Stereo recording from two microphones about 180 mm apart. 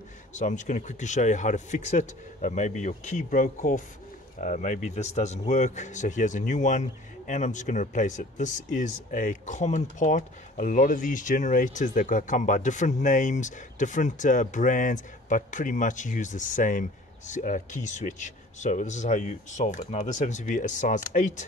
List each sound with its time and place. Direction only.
0.3 s a man's voice: 45° left (ahead or behind)